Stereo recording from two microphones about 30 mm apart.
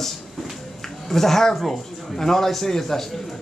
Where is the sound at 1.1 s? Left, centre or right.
Centre.